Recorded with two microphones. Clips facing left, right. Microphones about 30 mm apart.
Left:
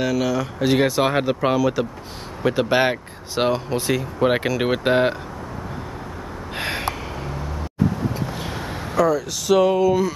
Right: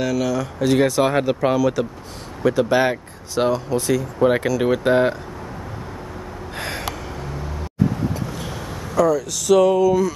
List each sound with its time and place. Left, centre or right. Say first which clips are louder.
0.0 s speech: even; centre
2.4 s speech: right 1 dB; left
6.5 s gasp: left 3 dB; left
8.1 s vehicle: left 1 dB; left
8.9 s speech: right 1 dB; centre